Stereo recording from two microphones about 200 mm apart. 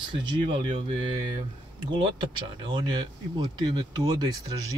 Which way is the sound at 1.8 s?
25° right (ahead or behind).